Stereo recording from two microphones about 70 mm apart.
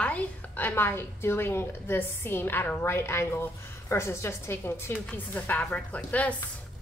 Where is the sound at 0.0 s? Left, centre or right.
Left.